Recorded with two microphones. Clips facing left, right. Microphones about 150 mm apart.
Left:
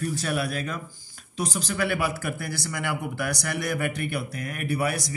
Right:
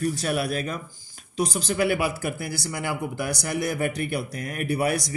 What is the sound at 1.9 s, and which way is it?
Speech, 45° left (ahead or behind).